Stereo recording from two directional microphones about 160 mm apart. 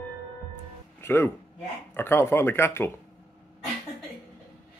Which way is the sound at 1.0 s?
15° left (ahead or behind).